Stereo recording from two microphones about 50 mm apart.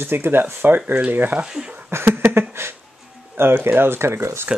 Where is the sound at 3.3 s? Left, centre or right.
Right.